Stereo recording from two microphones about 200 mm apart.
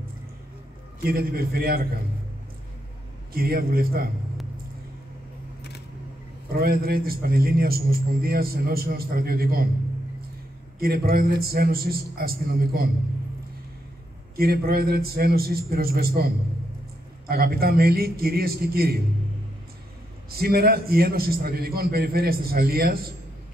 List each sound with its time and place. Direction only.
1.0 s a man's voice: 50° right (ahead or behind)
3.3 s a man's voice: 50° right (ahead or behind)
6.5 s a man's voice: 50° right (ahead or behind)
10.8 s a man's voice: 50° right (ahead or behind)
14.3 s a man's voice: 50° right (ahead or behind)
17.3 s a man's voice: 50° right (ahead or behind)
20.2 s a man's voice: 50° right (ahead or behind)